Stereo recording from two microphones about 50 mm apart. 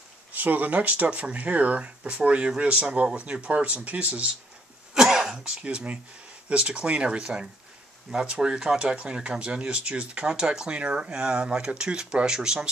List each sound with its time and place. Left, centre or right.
0.3 s speech: right
4.9 s speech: centre